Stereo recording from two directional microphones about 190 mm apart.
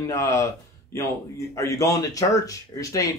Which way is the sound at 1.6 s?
15° left (ahead or behind).